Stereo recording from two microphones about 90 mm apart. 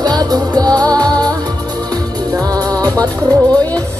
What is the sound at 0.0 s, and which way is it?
Music, 50° right (ahead or behind).